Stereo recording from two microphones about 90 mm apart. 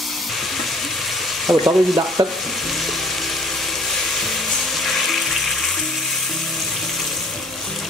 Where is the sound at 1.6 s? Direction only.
50° right (ahead or behind).